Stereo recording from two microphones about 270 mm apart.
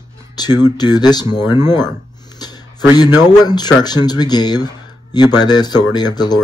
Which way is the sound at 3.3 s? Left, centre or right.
Centre.